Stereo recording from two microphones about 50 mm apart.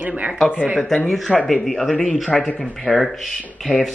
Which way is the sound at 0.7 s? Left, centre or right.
Centre.